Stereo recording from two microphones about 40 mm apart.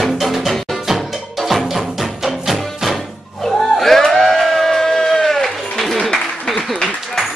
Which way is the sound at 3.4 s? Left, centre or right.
Centre.